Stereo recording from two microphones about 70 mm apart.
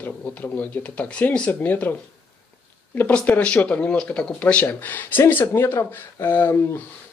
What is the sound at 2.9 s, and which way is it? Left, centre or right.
Speech, left.